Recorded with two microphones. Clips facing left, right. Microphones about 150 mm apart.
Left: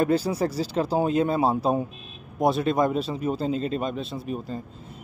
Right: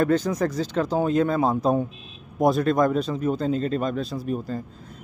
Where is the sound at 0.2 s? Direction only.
30° left (ahead or behind).